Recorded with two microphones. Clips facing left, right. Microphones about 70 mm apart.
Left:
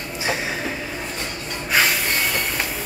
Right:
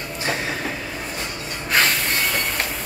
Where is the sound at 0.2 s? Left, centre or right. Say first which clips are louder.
Left 1 dB; centre.